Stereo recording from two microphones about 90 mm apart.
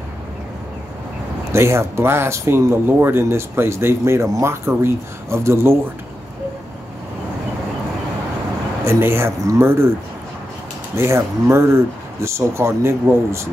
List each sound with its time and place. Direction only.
1.5 s speech: 30° right (ahead or behind)
8.8 s speech: 30° right (ahead or behind)
11.0 s speech: 30° right (ahead or behind)